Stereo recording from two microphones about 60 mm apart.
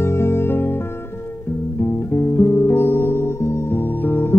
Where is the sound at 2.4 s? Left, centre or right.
Left.